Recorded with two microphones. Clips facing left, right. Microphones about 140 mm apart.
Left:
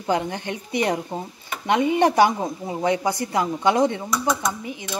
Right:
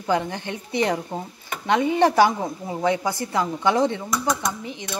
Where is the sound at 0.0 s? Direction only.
15° left (ahead or behind).